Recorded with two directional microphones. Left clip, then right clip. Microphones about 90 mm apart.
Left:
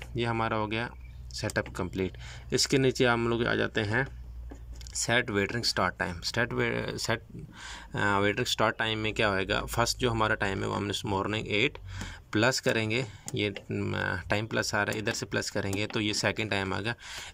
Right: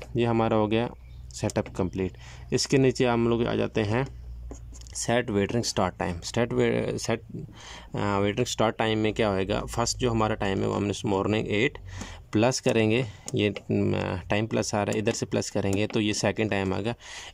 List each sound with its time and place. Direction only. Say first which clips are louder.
0.1 s speech: right 5 dB; 35° right (ahead or behind)
11.1 s speech: right 6 dB; 40° right (ahead or behind)
11.3 s speech: right 2 dB; 30° right (ahead or behind)
13.7 s speech: right 7 dB; 50° right (ahead or behind)
13.9 s speech: right 2 dB; 30° right (ahead or behind)